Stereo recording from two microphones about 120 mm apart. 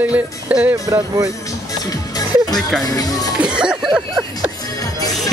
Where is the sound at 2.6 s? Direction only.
Centre (ahead or behind).